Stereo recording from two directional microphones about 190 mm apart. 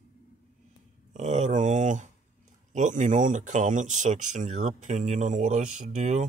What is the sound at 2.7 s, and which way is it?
Speech, 40° right (ahead or behind).